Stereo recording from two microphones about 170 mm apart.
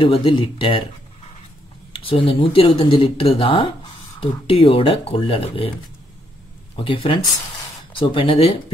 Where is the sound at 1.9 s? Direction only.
35° left (ahead or behind).